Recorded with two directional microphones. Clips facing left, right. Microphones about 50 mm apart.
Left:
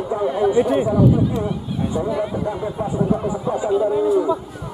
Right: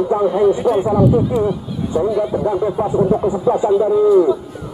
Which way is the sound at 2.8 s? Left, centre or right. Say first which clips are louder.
Right 4 dB; centre.